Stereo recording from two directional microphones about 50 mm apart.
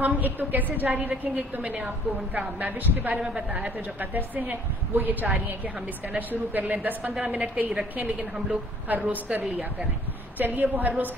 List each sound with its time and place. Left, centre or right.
0.0 s a woman's voice: right
3.2 s a woman's voice: right
3.5 s a woman's voice: right